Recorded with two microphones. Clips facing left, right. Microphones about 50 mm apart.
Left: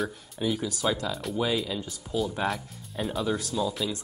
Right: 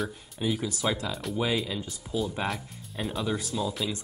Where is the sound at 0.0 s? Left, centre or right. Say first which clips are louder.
Left 1 dB; centre.